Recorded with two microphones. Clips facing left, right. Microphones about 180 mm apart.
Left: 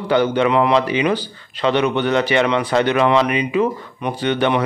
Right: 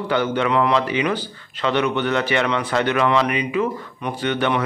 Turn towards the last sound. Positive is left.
turn(degrees=20)  # may be behind; listen again after turning